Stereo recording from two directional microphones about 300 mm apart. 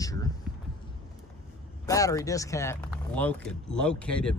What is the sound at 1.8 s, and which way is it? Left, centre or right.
Speech, centre.